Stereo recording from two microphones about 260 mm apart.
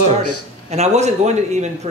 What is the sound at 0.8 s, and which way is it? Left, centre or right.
Speech, right.